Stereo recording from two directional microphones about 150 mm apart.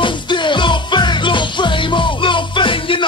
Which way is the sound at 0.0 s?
35° left (ahead or behind).